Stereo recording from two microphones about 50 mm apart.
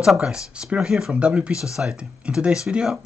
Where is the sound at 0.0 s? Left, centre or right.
Centre.